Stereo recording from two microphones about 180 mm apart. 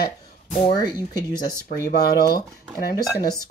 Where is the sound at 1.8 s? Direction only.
60° left (ahead or behind).